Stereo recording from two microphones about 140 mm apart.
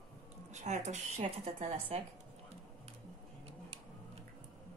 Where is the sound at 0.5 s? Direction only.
55° right (ahead or behind).